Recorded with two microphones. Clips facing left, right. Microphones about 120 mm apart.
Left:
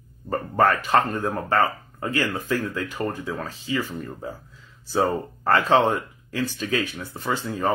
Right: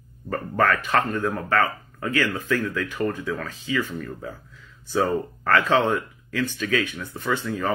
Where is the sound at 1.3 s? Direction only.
30° left (ahead or behind).